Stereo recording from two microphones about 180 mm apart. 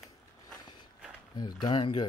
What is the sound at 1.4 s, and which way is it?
Speech, 25° left (ahead or behind).